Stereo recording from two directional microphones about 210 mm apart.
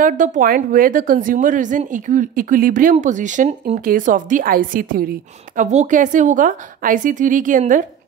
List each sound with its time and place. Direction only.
0.0 s a woman's voice: 40° right (ahead or behind)
5.7 s a woman's voice: 35° right (ahead or behind)